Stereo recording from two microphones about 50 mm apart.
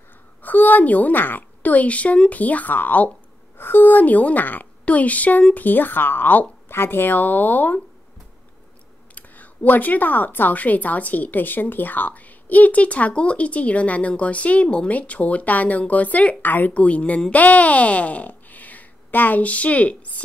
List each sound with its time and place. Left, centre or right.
0.4 s a woman's voice: left
6.7 s a woman's voice: left
9.1 s a woman's voice: left
16.7 s speech: left